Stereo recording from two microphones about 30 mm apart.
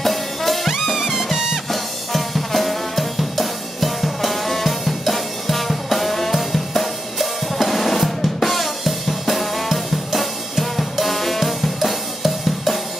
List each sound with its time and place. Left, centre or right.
0.0 s brass instrument: centre
0.9 s music: centre
1.7 s drum kit: centre